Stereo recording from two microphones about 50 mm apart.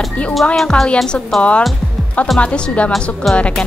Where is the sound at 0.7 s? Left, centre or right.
Centre.